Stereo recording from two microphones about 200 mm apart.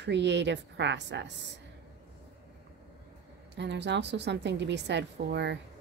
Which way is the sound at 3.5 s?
60° right (ahead or behind).